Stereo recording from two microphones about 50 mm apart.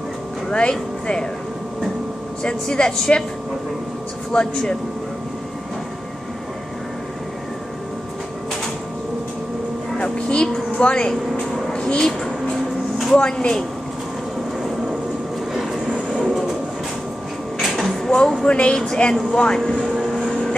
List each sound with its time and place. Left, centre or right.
0.5 s speech: left
2.4 s a woman's voice: centre
4.3 s a woman's voice: centre
9.9 s vehicle: left
11.7 s a sound: centre
13.2 s speech: centre
15.9 s train: left
17.6 s a sound: centre
18.0 s a woman's voice: centre
19.3 s vehicle: centre